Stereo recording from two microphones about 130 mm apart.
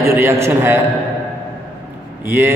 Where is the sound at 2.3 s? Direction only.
15° right (ahead or behind).